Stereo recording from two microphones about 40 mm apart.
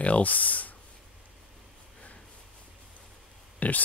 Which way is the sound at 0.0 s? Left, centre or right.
Left.